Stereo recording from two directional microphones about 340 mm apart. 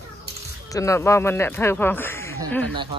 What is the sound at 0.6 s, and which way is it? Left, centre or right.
Speech, centre.